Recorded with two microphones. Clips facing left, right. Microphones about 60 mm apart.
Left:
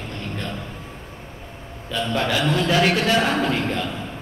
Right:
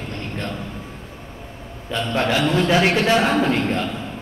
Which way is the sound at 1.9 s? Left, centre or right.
Right.